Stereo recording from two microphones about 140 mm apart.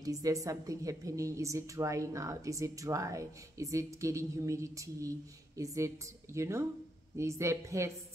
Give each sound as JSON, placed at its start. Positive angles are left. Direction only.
{"t": 0.0, "sound": "a woman's voice", "side_deg": -25}